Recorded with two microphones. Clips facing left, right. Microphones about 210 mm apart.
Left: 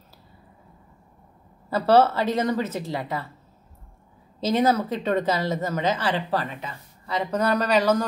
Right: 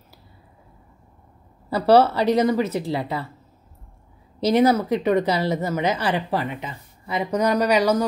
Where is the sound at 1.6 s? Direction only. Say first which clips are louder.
Right 2 dB; 15° right (ahead or behind).